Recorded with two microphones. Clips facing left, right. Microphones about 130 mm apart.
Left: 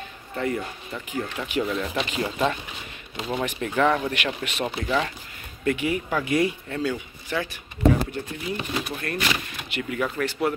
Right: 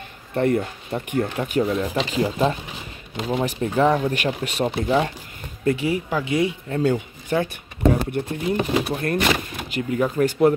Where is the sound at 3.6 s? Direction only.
35° right (ahead or behind).